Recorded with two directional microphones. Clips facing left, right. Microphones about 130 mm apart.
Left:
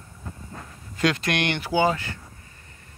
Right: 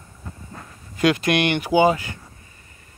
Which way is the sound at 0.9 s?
15° right (ahead or behind).